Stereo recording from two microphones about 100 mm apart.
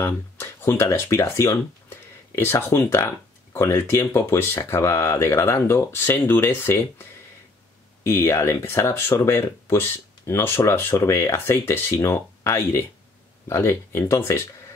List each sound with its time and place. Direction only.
0.0 s speech: 25° left (ahead or behind)